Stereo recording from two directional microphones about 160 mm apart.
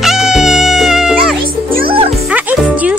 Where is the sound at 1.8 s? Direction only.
35° right (ahead or behind).